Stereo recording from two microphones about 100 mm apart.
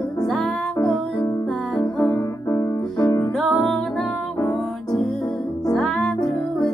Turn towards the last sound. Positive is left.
turn(degrees=5)  # may be behind; listen again after turning